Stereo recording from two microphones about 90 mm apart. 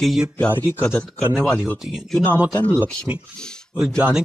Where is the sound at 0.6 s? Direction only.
20° left (ahead or behind).